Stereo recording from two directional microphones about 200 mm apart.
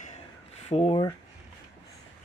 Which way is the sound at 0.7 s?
25° left (ahead or behind).